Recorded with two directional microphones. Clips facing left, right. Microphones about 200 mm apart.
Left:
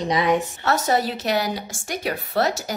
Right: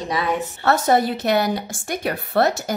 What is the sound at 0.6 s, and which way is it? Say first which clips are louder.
A woman's voice: right 6 dB; 55° right (ahead or behind).